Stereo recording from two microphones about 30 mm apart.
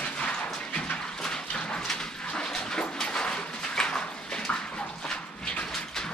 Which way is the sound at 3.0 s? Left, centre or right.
Left.